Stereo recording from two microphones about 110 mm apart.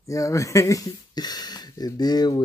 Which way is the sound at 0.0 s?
30° left (ahead or behind).